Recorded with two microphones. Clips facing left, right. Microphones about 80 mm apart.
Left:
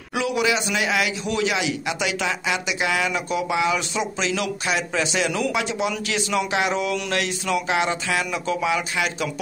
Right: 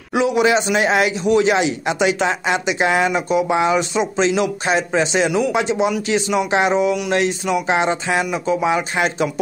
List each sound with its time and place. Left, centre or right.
0.1 s a man's voice: right